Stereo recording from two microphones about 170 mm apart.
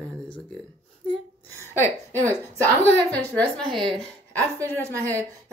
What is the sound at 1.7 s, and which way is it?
A woman's voice, 15° left (ahead or behind).